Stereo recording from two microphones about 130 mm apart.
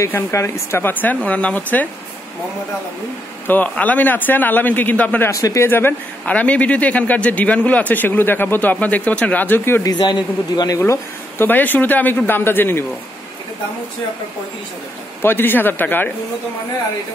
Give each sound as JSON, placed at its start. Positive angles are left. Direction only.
{"t": 0.0, "sound": "a man's voice", "side_deg": 20}
{"t": 3.4, "sound": "a man's voice", "side_deg": 10}
{"t": 5.3, "sound": "a man's voice", "side_deg": 25}
{"t": 9.8, "sound": "a man's voice", "side_deg": 35}
{"t": 10.8, "sound": "a man's voice", "side_deg": 20}
{"t": 15.2, "sound": "a man's voice", "side_deg": 15}